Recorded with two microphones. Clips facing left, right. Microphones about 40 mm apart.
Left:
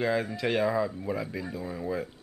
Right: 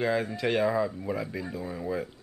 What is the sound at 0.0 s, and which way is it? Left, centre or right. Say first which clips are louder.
Speech: even; centre.